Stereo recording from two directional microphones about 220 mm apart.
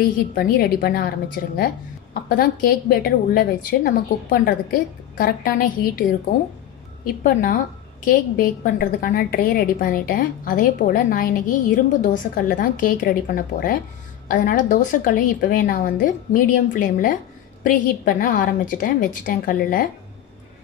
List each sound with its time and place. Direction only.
0.0 s a woman's voice: 40° left (ahead or behind)
7.2 s a woman's voice: 40° left (ahead or behind)